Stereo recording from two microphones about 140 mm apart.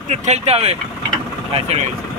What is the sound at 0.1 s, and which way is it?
Speech, 55° right (ahead or behind).